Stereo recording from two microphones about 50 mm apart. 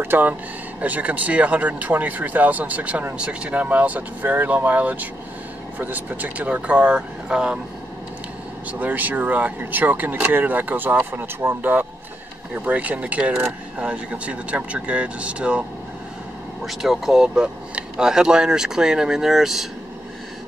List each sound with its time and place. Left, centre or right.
0.0 s speech: right
0.3 s speech: right; by 7.6 s centre
8.7 s speech: right
16.6 s speech: centre